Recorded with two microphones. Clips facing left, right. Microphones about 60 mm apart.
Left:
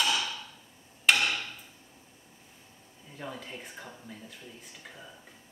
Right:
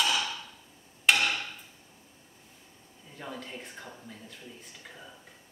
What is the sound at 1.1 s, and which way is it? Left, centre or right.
Hammer, centre.